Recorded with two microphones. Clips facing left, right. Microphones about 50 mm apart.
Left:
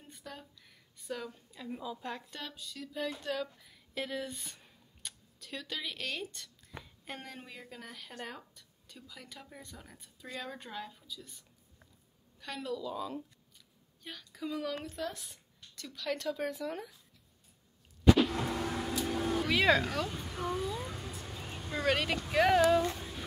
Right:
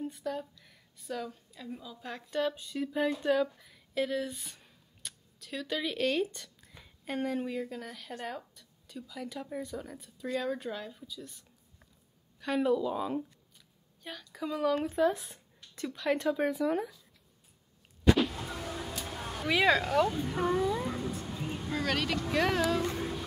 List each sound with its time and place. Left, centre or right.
0.0 s speech: centre
2.5 s speech: right
3.3 s a woman's voice: centre
12.5 s speech: right
14.0 s a woman's voice: centre
15.7 s speech: right
16.4 s a woman's voice: centre
18.3 s car: left
19.4 s speech: centre
20.4 s vehicle: right
21.3 s vehicle: centre
21.7 s speech: centre
22.8 s child singing: right